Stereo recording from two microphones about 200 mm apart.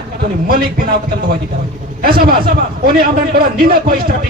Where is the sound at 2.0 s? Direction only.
45° right (ahead or behind).